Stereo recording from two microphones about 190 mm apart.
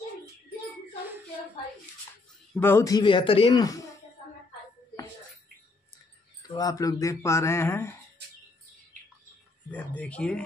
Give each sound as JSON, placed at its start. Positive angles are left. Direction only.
{"t": 2.6, "sound": "a man's voice", "side_deg": 15}
{"t": 6.4, "sound": "speech", "side_deg": 20}
{"t": 9.7, "sound": "speech", "side_deg": 5}